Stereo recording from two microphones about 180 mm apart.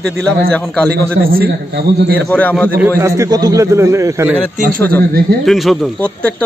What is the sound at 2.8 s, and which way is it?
A man's voice, 15° right (ahead or behind).